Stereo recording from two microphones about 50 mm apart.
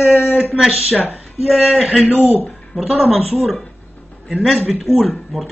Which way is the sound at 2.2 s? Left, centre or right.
Right.